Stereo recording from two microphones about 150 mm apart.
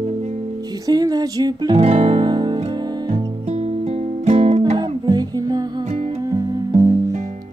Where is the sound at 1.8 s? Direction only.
45° right (ahead or behind).